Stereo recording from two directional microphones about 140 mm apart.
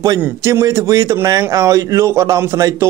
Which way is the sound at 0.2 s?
20° right (ahead or behind).